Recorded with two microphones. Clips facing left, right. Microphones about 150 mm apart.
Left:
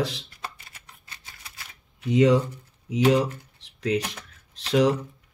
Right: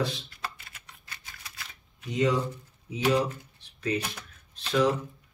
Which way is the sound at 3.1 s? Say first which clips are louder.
Left 2 dB; 90° left.